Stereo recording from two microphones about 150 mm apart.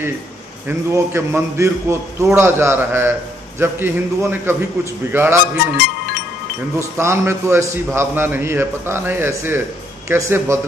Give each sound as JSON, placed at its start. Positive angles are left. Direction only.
{"t": 0.7, "sound": "a man's voice", "side_deg": -15}
{"t": 7.0, "sound": "a man's voice", "side_deg": -20}